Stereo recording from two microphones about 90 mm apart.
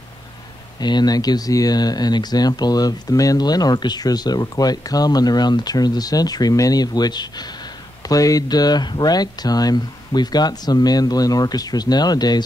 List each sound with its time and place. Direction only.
0.7 s speech: 50° left (ahead or behind)